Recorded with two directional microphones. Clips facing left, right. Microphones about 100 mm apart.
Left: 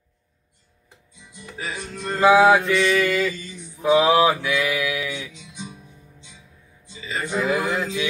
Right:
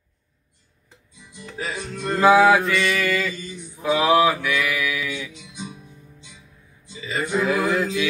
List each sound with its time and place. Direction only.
1.6 s music: 5° right (ahead or behind)
2.1 s mantra: 20° left (ahead or behind)
7.4 s mantra: 20° left (ahead or behind)